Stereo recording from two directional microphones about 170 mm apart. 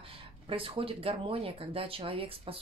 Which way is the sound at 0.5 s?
30° right (ahead or behind).